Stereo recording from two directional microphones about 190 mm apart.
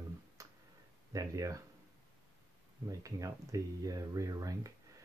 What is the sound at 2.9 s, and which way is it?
Speech, 15° right (ahead or behind).